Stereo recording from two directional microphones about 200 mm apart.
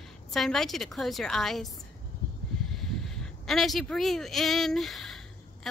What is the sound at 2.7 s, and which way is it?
A woman's voice, centre (ahead or behind).